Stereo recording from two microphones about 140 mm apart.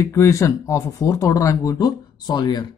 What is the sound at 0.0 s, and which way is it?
Speech, 20° left (ahead or behind).